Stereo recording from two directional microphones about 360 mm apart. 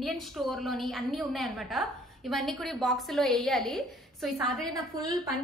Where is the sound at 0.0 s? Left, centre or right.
Centre.